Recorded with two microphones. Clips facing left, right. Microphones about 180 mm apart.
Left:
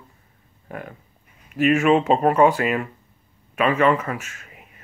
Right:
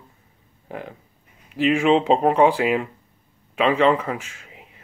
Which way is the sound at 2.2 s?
10° right (ahead or behind).